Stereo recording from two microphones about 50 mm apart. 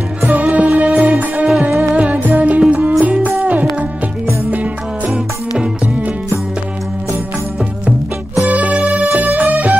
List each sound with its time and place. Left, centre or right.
0.3 s music: right
8.5 s music: right